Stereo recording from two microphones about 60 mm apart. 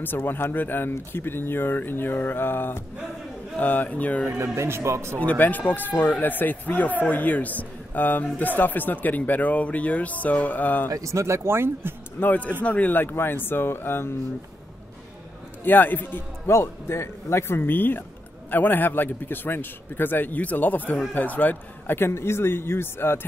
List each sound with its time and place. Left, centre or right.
0.0 s a man's voice: left
4.6 s speech: right
5.1 s a man's voice: left
10.9 s speech: right
12.2 s a man's voice: left
15.6 s speech: left
16.4 s speech: left